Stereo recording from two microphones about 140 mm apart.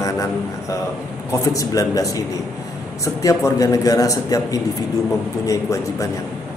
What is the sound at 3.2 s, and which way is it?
A man's voice, 25° left (ahead or behind).